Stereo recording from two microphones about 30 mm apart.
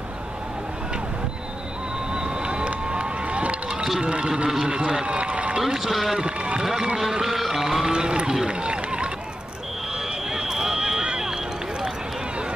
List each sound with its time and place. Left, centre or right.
2.1 s a sound: right
3.7 s run: centre
4.0 s a man's voice: right
4.5 s a man's voice: right
5.0 s run: right
5.9 s speech: centre
6.1 s speech: right
6.6 s speech: centre
7.0 s music: centre
7.8 s speech: right
8.5 s run: right
10.3 s run: right